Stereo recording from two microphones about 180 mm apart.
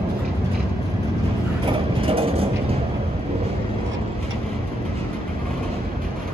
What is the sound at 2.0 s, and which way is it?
Vehicle, 30° right (ahead or behind).